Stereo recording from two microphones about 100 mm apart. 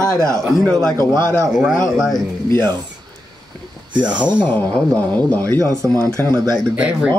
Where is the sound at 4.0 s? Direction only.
15° right (ahead or behind).